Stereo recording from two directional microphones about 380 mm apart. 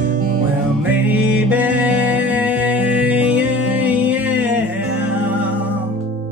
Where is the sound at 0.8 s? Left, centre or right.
Centre.